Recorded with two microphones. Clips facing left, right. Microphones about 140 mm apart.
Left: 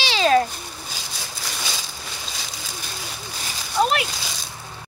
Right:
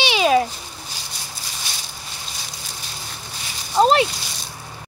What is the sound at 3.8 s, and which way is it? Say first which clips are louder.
Speech: right 5 dB; 30° right (ahead or behind).